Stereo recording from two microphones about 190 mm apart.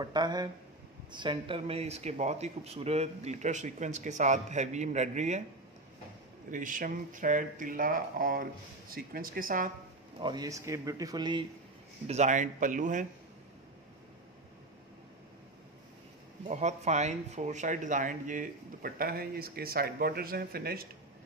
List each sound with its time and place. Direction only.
0.0 s speech: 20° right (ahead or behind); by 5.4 s 40° right (ahead or behind)
6.5 s speech: 45° right (ahead or behind)
10.2 s speech: 20° right (ahead or behind)
12.1 s speech: 40° right (ahead or behind)
16.4 s speech: 35° right (ahead or behind); by 20.8 s 55° right (ahead or behind)